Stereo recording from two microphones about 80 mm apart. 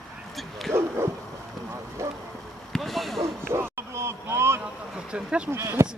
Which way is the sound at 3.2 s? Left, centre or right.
Right.